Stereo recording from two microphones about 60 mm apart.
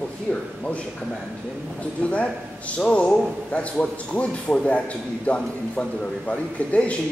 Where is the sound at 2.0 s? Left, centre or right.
Left.